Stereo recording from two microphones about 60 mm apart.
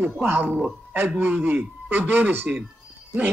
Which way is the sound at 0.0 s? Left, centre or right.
Right.